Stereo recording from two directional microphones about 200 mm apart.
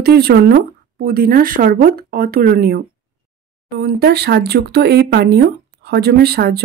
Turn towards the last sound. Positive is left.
turn(degrees=-50)  # may be behind; listen again after turning